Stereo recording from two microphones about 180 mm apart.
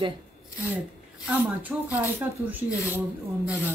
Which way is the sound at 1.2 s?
10° right (ahead or behind).